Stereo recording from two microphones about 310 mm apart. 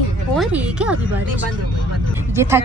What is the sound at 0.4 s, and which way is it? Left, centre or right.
Speech, centre.